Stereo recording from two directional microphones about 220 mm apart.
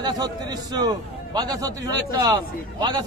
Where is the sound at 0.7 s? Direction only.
20° right (ahead or behind).